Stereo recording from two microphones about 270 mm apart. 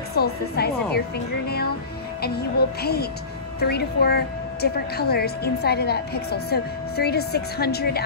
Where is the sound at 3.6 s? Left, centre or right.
Left.